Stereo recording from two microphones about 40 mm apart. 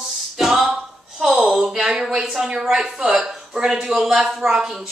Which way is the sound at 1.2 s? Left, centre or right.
Centre.